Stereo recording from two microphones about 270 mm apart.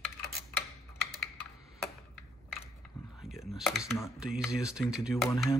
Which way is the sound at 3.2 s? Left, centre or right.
Centre.